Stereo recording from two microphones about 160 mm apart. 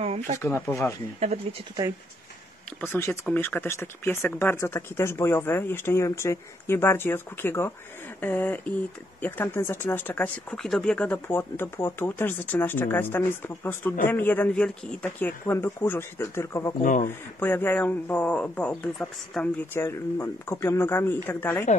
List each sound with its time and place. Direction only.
0.0 s a sound: 40° right (ahead or behind)
0.4 s speech: 15° left (ahead or behind)
1.2 s speech: 40° right (ahead or behind)
2.8 s speech: 15° left (ahead or behind)